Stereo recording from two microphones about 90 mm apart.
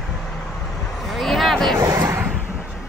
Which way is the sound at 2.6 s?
Centre (ahead or behind).